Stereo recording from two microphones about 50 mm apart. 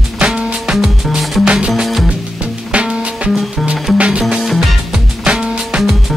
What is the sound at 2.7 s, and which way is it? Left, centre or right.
Music, right.